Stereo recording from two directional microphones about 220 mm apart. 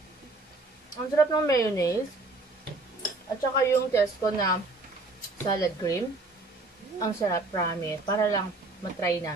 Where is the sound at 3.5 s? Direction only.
15° left (ahead or behind).